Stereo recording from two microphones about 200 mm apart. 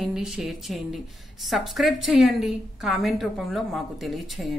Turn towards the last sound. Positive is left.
turn(degrees=0)  # may be behind; listen again after turning